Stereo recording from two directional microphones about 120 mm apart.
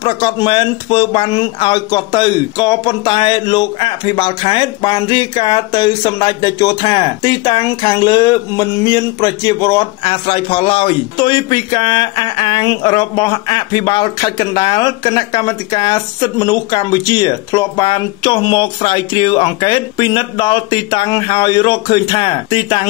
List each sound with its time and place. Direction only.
0.0 s speech: 40° left (ahead or behind)